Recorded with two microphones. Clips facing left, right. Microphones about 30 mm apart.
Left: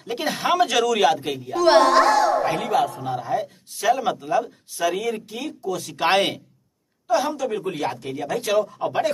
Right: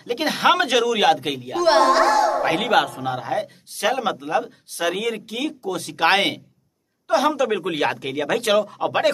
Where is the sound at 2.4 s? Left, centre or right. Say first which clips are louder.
Right 2 dB; right.